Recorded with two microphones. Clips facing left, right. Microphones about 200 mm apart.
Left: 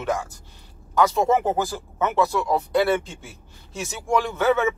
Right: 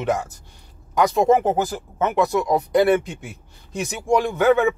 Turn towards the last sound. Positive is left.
turn(degrees=-15)  # may be behind; listen again after turning